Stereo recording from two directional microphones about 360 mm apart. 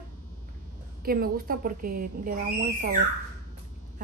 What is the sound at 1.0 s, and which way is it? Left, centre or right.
A woman's voice, right.